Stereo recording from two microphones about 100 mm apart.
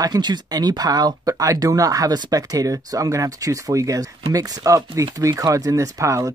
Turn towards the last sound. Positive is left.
turn(degrees=-35)  # may be behind; listen again after turning